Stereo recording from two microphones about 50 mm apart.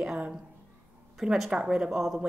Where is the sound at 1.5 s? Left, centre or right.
Centre.